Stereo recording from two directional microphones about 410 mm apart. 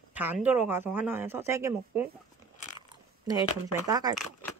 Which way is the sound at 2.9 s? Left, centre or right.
Centre.